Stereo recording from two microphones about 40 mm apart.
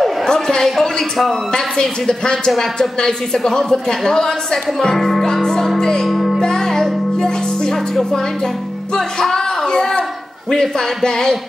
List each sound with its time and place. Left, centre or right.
0.3 s a sound: centre
0.7 s speech: centre
1.5 s speech: centre
4.9 s speech: centre
6.0 s music: centre
6.4 s music: centre
8.9 s speech: centre